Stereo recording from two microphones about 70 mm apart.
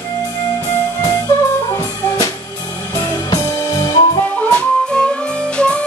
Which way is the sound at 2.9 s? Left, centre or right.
Left.